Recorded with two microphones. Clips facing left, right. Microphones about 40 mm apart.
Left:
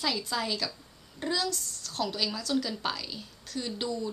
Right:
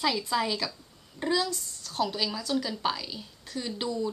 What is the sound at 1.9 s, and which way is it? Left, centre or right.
A woman's voice, centre.